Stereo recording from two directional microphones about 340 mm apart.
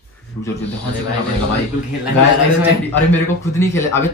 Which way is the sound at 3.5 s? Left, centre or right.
Centre.